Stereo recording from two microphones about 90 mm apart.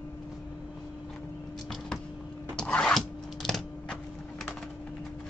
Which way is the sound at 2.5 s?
10° left (ahead or behind).